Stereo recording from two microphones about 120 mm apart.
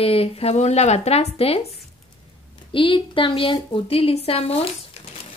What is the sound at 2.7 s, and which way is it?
Speech, 45° left (ahead or behind).